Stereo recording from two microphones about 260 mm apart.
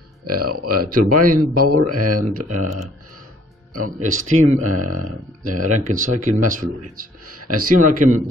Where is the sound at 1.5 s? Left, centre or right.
Right.